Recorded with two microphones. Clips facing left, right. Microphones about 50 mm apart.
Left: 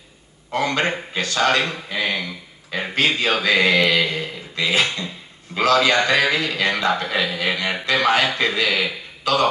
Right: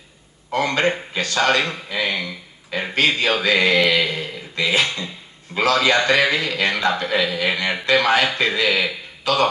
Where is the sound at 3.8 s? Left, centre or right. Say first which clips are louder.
Even; right.